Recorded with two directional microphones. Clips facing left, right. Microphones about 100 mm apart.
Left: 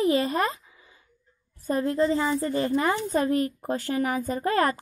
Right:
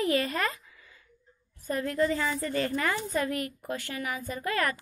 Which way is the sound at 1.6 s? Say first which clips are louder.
Left 4 dB; 25° left (ahead or behind).